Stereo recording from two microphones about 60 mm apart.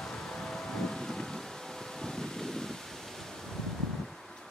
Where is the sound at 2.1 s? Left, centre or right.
Centre.